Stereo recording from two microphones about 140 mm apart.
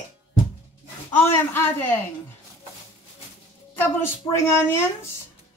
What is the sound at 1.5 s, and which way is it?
Speech, 15° left (ahead or behind).